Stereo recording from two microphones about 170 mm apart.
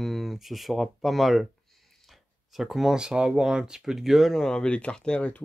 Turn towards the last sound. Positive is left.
turn(degrees=5)  # may be behind; listen again after turning